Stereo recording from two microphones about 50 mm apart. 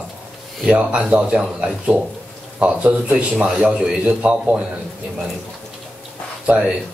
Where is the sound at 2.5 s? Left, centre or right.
Right.